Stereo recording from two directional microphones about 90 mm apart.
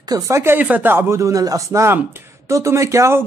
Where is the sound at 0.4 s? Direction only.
20° right (ahead or behind).